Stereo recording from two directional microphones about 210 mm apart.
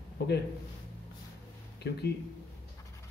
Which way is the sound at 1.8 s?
50° left (ahead or behind).